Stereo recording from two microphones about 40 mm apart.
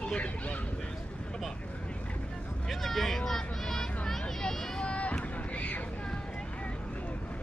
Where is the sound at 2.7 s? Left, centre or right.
Centre.